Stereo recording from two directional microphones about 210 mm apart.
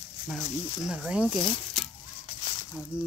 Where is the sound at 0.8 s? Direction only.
5° right (ahead or behind).